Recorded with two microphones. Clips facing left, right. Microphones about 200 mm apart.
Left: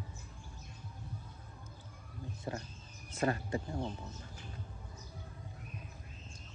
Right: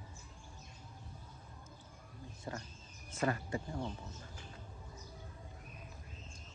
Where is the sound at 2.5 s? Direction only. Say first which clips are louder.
Left 3 dB; 30° left (ahead or behind).